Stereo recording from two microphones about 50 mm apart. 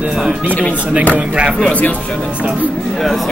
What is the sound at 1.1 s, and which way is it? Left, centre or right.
Speech, right.